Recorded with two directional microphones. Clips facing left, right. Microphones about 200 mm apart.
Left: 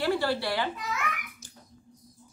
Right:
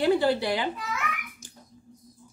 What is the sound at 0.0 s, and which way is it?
Speech, 20° right (ahead or behind).